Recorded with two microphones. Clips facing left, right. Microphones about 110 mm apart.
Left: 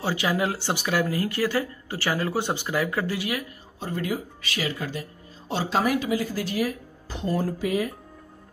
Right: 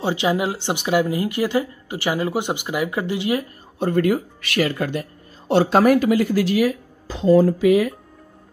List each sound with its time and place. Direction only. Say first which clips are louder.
0.0 s speech: right 4 dB; 20° right (ahead or behind)
3.8 s speech: right 10 dB; 60° right (ahead or behind); by 7.9 s 90° right